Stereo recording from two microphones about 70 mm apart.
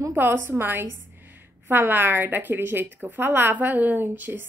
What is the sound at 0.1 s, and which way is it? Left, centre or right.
A woman's voice, right.